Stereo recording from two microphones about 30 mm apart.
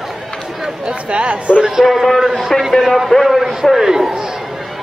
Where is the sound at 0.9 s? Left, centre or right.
Right.